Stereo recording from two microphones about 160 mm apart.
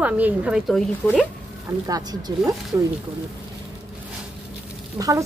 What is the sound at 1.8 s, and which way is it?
Speech, 25° right (ahead or behind).